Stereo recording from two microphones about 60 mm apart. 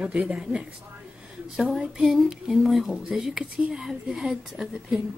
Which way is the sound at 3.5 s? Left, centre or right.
Centre.